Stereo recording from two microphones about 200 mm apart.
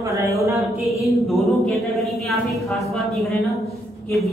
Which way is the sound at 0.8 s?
Centre (ahead or behind).